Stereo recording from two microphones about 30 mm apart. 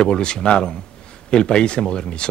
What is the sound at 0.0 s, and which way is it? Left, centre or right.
Speech, left.